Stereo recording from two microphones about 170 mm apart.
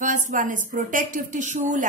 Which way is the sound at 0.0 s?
50° right (ahead or behind).